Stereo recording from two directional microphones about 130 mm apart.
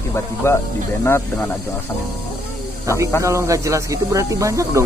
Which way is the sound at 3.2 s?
25° right (ahead or behind).